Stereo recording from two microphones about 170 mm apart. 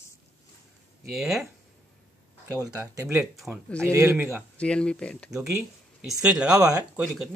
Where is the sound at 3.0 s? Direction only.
5° right (ahead or behind).